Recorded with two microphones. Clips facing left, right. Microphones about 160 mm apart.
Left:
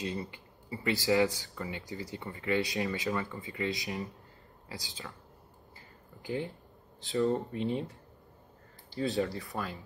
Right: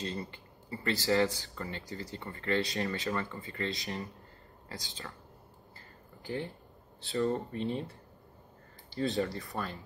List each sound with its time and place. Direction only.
0.0 s speech: 15° left (ahead or behind)
6.2 s speech: 15° left (ahead or behind)
8.9 s speech: centre (ahead or behind)